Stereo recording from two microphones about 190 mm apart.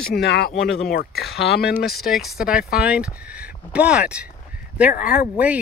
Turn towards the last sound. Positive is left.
turn(degrees=50)  # may be behind; listen again after turning